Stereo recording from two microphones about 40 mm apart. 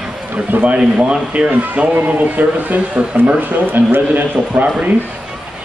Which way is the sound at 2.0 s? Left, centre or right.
Right.